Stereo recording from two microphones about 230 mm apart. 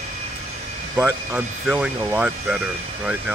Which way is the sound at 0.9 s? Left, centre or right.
Centre.